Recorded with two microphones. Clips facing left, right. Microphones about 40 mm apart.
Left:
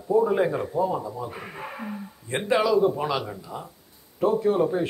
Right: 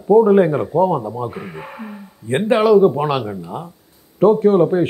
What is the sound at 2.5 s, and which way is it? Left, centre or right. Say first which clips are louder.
Speech: right 8 dB; right.